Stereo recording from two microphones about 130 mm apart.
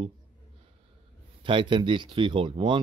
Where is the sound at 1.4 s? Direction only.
40° right (ahead or behind).